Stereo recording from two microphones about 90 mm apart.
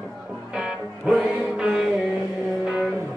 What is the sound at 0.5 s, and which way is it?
Music, 10° right (ahead or behind).